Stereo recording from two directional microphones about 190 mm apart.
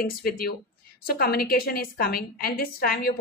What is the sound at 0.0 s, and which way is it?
Speech, 50° left (ahead or behind).